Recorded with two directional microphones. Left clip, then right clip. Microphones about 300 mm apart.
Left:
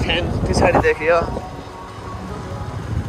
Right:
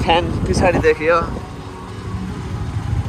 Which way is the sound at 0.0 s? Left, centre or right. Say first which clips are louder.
Right 5 dB; centre.